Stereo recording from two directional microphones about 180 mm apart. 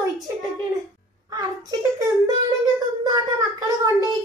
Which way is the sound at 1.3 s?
20° right (ahead or behind).